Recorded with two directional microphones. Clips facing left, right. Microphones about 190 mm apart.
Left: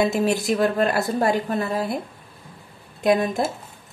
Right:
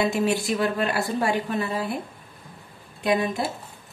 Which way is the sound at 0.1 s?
40° left (ahead or behind).